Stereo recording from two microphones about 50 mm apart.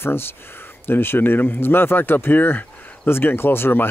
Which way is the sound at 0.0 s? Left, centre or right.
Left.